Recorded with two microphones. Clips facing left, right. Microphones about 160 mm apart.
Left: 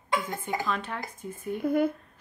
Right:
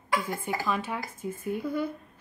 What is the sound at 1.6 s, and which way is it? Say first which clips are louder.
Speech: left 8 dB; 50° left (ahead or behind).